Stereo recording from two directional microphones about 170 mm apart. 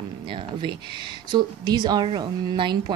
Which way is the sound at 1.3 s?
25° right (ahead or behind).